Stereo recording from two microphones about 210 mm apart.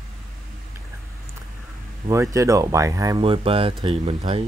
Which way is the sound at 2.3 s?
15° right (ahead or behind).